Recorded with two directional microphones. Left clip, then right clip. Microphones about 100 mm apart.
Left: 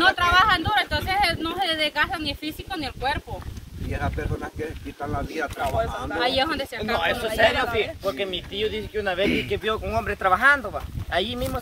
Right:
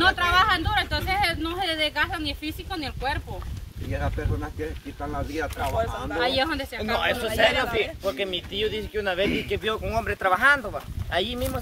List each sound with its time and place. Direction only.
0.0 s a sound: 30° left (ahead or behind)
3.9 s speech: 65° left (ahead or behind)
6.1 s speech: 30° left (ahead or behind)
7.0 s speech: 50° right (ahead or behind)
7.6 s speech: 25° right (ahead or behind); by 9.3 s 45° right (ahead or behind)
9.5 s speech: 30° right (ahead or behind)
11.1 s speech: 10° right (ahead or behind)